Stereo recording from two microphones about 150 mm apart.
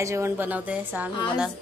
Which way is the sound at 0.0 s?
20° right (ahead or behind).